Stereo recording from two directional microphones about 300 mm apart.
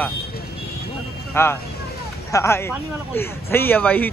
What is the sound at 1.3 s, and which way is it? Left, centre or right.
Speech, centre.